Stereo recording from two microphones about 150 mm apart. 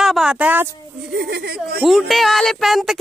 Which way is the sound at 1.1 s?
90° right.